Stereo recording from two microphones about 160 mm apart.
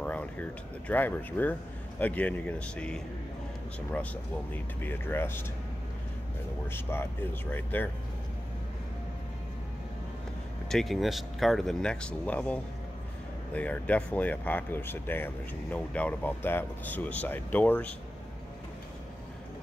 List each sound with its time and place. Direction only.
0.0 s speech: 10° left (ahead or behind)
6.7 s speech: 15° left (ahead or behind)
10.7 s speech: centre (ahead or behind)